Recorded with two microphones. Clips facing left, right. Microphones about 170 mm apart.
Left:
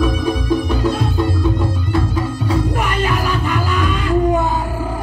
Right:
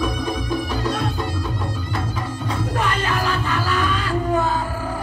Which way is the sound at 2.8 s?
15° left (ahead or behind).